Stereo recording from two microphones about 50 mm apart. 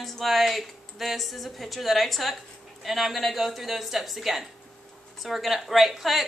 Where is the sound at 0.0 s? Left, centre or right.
Centre.